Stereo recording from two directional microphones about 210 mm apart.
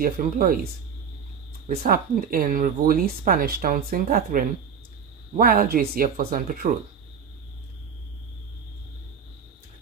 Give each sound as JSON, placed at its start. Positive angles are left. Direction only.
{"t": 0.0, "sound": "speech", "side_deg": -45}
{"t": 1.7, "sound": "speech", "side_deg": -45}